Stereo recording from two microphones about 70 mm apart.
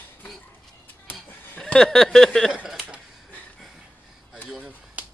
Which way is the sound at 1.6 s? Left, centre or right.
Centre.